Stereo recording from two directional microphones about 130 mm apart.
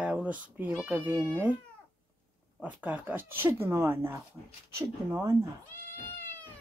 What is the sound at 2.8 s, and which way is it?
Speech, 15° right (ahead or behind).